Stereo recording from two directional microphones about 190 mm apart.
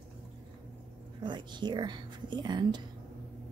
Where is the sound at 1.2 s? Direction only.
25° right (ahead or behind).